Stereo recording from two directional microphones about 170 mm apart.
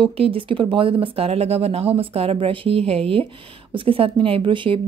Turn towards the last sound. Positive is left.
turn(degrees=-30)  # may be behind; listen again after turning